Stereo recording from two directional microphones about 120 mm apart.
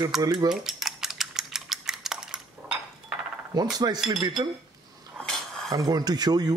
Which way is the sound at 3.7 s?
35° right (ahead or behind).